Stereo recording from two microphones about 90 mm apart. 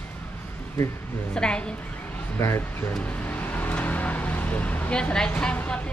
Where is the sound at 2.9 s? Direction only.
15° left (ahead or behind).